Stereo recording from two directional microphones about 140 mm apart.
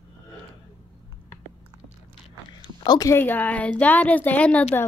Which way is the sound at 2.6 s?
30° left (ahead or behind).